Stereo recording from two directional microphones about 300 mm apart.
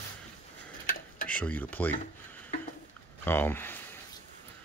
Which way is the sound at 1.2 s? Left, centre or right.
Centre.